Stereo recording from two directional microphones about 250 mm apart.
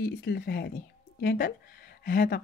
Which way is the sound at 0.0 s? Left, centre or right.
Left.